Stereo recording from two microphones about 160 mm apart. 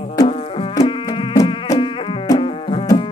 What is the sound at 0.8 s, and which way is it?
Insect, 35° left (ahead or behind).